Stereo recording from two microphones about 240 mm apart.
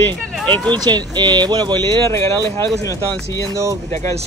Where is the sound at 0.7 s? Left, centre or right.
Centre.